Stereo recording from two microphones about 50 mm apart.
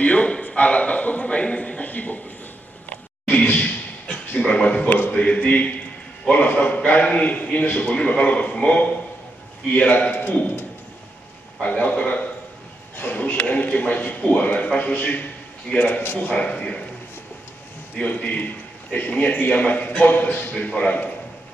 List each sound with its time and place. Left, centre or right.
0.0 s a man's voice: left
2.9 s a sound: left
5.1 s a man's voice: left
11.6 s a man's voice: left
12.9 s speech: left
15.8 s speech: left
16.3 s a man's voice: left
17.9 s a man's voice: left